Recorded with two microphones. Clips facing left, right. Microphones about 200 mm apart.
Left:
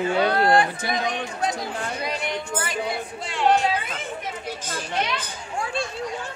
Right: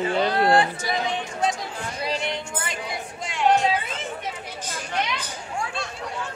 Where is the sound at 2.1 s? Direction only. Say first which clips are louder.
Right 5 dB; 30° right (ahead or behind).